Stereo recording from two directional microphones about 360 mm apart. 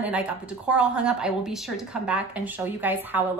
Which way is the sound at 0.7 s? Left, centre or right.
Centre.